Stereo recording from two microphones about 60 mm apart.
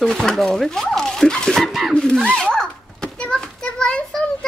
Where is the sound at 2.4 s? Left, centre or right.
Centre.